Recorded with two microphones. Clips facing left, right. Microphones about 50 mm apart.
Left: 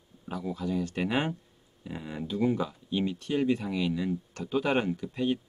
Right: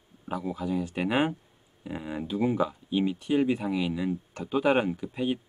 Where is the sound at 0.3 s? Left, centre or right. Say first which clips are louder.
Right 2 dB; centre.